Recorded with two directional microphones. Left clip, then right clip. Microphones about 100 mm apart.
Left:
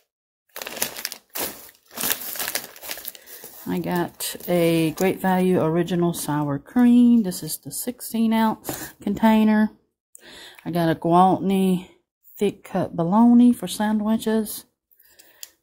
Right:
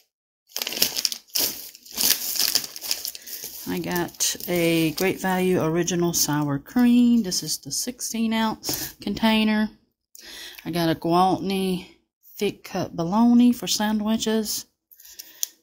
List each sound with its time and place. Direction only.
0.6 s a sound: 10° left (ahead or behind)
2.3 s crumpling: 40° left (ahead or behind)
3.6 s speech: 35° left (ahead or behind)
4.9 s speech: 30° left (ahead or behind); by 9.8 s 50° left (ahead or behind)
10.2 s speech: 40° left (ahead or behind)
13.3 s speech: 30° left (ahead or behind)